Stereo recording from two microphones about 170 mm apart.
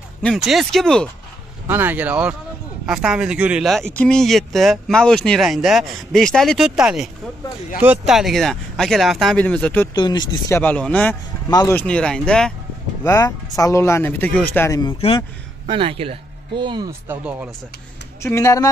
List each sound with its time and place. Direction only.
0.2 s speech: centre (ahead or behind)
1.7 s speech: 10° right (ahead or behind); by 9.8 s 10° left (ahead or behind)
9.9 s speech: 25° left (ahead or behind)
10.6 s speech: 10° left (ahead or behind)
11.4 s speech: 20° left (ahead or behind)
11.7 s speech: 5° left (ahead or behind)
13.0 s speech: 20° left (ahead or behind)
14.8 s speech: 30° left (ahead or behind)
15.6 s speech: 30° right (ahead or behind)
17.1 s speech: 5° right (ahead or behind)
18.2 s speech: 20° left (ahead or behind)